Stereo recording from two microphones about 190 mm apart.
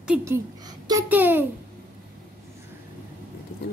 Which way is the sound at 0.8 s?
15° right (ahead or behind).